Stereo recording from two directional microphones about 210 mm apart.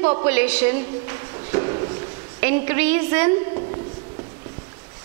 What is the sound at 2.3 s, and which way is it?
Speech, 15° right (ahead or behind).